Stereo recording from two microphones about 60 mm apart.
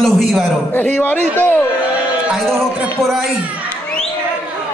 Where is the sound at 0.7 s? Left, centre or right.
Left.